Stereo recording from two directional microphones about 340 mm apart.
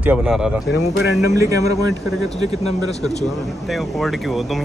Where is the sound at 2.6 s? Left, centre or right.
Centre.